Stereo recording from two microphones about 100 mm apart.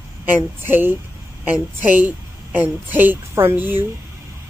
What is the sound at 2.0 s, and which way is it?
A woman's voice, 15° right (ahead or behind).